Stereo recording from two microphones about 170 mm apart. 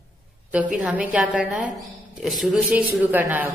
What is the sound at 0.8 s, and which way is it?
A man's voice, 5° right (ahead or behind).